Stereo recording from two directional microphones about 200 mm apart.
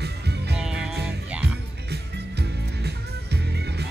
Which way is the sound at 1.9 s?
55° right (ahead or behind).